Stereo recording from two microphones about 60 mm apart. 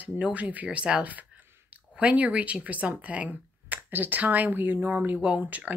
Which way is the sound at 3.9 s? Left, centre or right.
Right.